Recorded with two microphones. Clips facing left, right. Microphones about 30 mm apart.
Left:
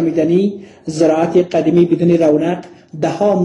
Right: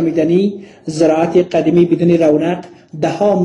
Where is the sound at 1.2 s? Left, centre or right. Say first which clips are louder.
Right 1 dB; right.